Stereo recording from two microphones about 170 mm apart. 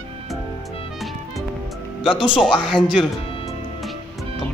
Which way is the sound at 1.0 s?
Centre (ahead or behind).